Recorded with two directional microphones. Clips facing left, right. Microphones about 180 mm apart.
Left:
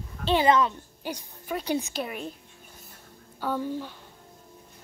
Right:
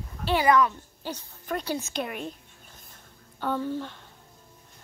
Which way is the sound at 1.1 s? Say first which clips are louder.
Even; 10° left (ahead or behind).